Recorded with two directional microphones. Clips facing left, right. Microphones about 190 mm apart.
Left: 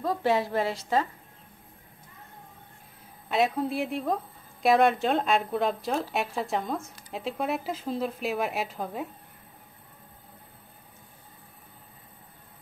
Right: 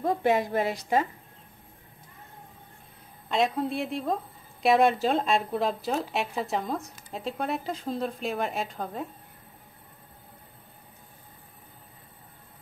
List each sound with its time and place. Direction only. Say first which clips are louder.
0.0 s a woman's voice: right 1 dB; 20° right (ahead or behind)
3.3 s a woman's voice: even; 5° left (ahead or behind)